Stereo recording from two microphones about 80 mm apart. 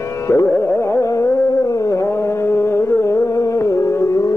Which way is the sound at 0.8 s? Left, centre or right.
Left.